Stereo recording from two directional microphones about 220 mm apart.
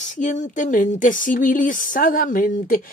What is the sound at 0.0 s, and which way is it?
A woman's voice, 35° left (ahead or behind).